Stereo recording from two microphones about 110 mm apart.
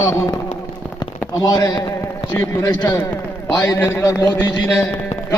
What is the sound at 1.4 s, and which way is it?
A man's voice, 35° left (ahead or behind).